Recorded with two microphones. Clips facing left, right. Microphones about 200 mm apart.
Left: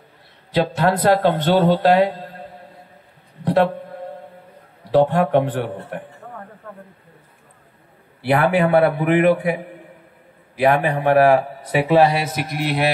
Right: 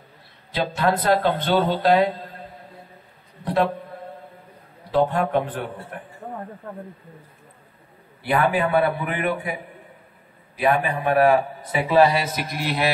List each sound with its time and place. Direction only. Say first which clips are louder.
0.5 s a man's voice: left 4 dB; 70° left (ahead or behind)
4.9 s a man's voice: left 5 dB; 75° left (ahead or behind)
6.2 s a sound: right 3 dB; 30° right (ahead or behind)
8.2 s a man's voice: left 4 dB; 70° left (ahead or behind)